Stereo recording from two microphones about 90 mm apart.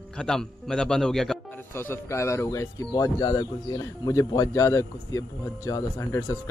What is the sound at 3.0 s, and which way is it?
Speech, 45° left (ahead or behind).